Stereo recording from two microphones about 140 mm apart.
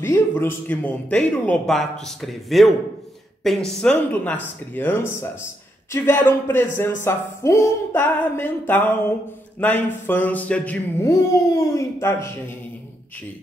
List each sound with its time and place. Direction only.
0.0 s speech: 20° left (ahead or behind)
11.1 s a child's voice: 25° left (ahead or behind)